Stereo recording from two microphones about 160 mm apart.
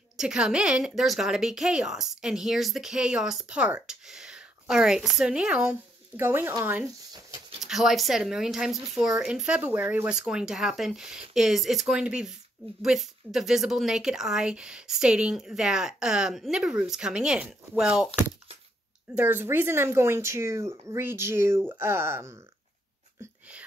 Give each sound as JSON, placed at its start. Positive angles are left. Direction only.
{"t": 0.2, "sound": "a woman's voice", "side_deg": -5}
{"t": 7.6, "sound": "a woman's voice", "side_deg": 0}